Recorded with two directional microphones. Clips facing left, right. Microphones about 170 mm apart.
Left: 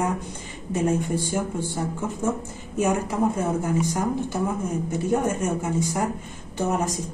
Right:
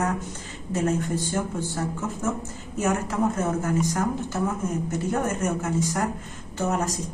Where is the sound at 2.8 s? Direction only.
15° left (ahead or behind).